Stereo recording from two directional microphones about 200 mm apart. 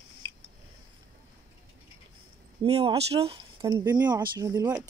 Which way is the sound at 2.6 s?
20° right (ahead or behind).